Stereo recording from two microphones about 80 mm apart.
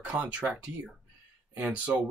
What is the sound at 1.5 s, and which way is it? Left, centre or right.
Speech, centre.